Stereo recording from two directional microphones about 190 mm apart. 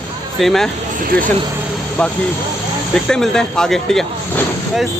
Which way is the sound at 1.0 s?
45° right (ahead or behind).